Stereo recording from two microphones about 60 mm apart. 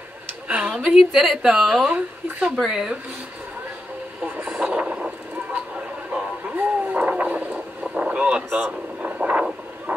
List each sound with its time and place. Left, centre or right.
0.5 s a sound: right
0.8 s a woman's voice: centre
4.6 s vehicle: centre
5.5 s a sound: centre
7.9 s boat: centre
9.0 s vehicle: right